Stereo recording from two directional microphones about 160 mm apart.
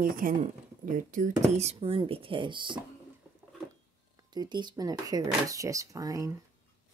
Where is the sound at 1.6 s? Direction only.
40° right (ahead or behind).